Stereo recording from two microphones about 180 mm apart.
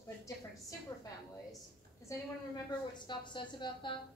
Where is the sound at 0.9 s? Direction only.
20° left (ahead or behind).